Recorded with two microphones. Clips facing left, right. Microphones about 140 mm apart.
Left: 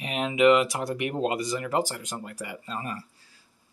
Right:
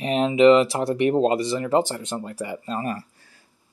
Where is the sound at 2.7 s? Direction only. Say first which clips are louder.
Right 7 dB; 40° right (ahead or behind).